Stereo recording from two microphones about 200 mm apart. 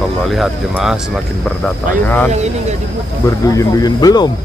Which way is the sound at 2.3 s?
35° right (ahead or behind).